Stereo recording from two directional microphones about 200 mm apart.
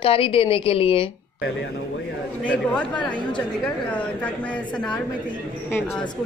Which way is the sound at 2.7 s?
5° left (ahead or behind).